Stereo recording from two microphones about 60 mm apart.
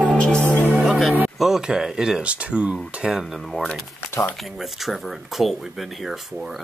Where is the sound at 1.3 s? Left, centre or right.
Centre.